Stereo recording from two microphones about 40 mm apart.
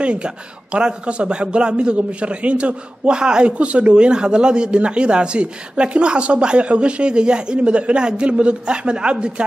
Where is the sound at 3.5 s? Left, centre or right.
Right.